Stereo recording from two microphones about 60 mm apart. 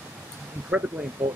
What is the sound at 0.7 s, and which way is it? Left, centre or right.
Speech, right.